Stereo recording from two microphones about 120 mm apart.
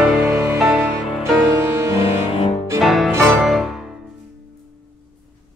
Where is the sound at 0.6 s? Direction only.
Centre (ahead or behind).